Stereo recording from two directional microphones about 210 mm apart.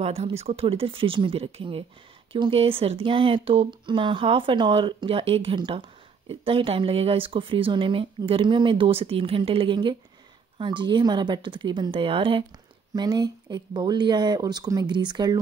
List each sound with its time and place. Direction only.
0.0 s speech: 30° right (ahead or behind)